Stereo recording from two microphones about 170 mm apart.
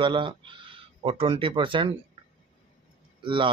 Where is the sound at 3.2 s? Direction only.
30° right (ahead or behind).